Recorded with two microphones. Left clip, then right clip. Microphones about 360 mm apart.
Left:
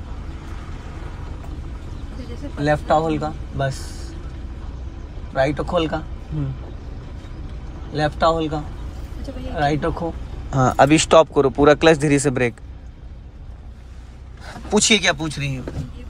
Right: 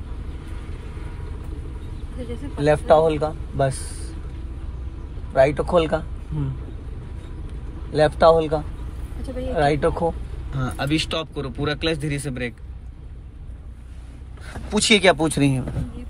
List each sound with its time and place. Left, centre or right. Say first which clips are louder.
2.6 s speech: right 2 dB; centre
5.3 s speech: right 3 dB; centre
7.9 s speech: right 4 dB; centre
10.5 s speech: left 11 dB; centre
14.4 s speech: left 4 dB; centre